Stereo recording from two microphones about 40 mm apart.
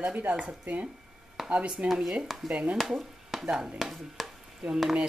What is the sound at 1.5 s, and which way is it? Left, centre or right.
A woman's voice, right.